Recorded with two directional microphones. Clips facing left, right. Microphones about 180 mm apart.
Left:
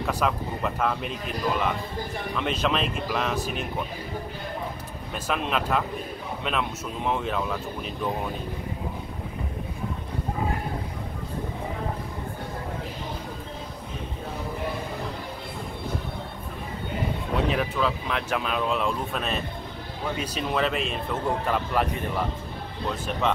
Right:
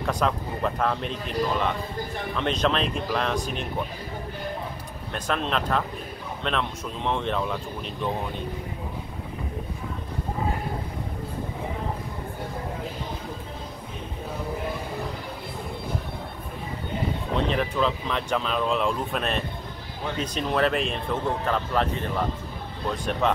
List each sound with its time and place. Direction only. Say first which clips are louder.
0.0 s a man's voice: right 1 dB; 5° left (ahead or behind)
2.3 s a man's voice: right 2 dB; 5° left (ahead or behind)
5.1 s a man's voice: right 1 dB; 5° left (ahead or behind)
17.5 s a man's voice: right 2 dB; 5° left (ahead or behind)